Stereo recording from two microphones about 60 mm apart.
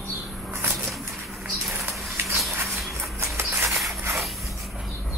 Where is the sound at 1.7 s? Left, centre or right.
Right.